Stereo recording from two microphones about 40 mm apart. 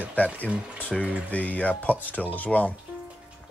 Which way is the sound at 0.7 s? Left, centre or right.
Left.